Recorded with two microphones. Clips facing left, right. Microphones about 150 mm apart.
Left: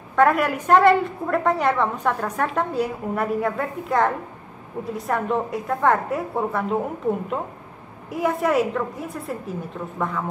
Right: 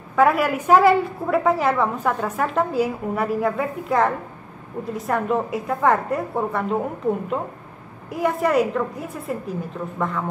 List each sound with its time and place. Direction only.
0.1 s a woman's voice: 5° right (ahead or behind)